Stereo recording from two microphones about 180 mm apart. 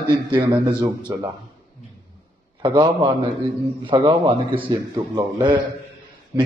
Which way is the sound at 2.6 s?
25° right (ahead or behind).